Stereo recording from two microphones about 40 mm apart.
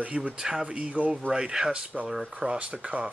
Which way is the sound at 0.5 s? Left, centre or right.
Centre.